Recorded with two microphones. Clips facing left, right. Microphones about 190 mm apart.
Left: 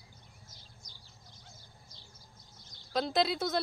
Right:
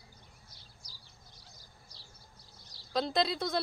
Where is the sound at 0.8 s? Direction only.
35° right (ahead or behind).